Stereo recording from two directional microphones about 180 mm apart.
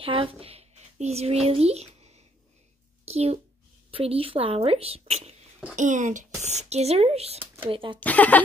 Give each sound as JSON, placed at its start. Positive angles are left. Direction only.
{"t": 0.0, "sound": "a child's voice", "side_deg": -30}
{"t": 8.0, "sound": "speech", "side_deg": 10}